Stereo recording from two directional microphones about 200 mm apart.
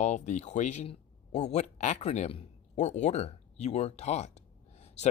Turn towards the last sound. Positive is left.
turn(degrees=35)  # may be behind; listen again after turning